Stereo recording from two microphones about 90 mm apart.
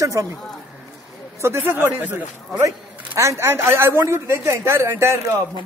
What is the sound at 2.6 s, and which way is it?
Speech, 35° right (ahead or behind).